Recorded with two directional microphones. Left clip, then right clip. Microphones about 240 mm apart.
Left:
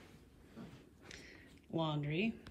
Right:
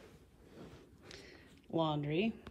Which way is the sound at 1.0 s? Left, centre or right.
Centre.